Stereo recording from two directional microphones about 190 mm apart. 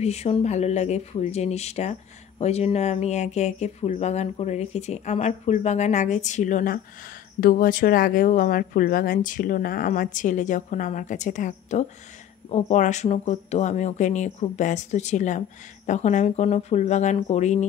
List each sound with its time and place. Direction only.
0.0 s speech: 35° left (ahead or behind)